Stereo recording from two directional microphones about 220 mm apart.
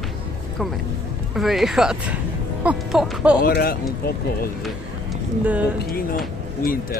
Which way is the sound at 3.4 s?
40° left (ahead or behind).